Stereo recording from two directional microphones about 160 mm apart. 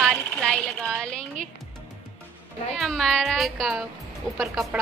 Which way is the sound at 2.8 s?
5° left (ahead or behind).